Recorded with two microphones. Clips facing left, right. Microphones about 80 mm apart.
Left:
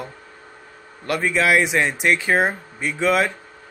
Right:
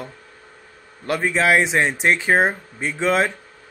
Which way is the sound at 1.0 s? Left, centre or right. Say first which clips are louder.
Right 1 dB; right.